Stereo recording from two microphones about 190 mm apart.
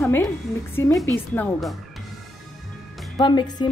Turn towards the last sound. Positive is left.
turn(degrees=20)  # may be behind; listen again after turning